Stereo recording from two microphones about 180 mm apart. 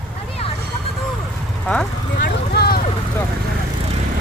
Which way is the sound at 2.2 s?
60° left (ahead or behind).